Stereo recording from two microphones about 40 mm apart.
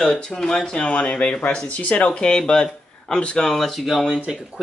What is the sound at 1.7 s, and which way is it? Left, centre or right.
Speech, left.